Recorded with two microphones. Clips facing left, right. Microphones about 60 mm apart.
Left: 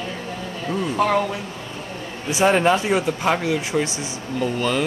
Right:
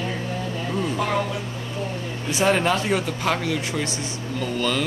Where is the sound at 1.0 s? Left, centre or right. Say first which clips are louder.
Left 8 dB; left.